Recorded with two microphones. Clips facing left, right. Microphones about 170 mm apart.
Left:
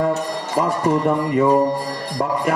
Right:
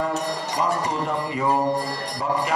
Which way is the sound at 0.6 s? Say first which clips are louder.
Left 7 dB; 55° left (ahead or behind).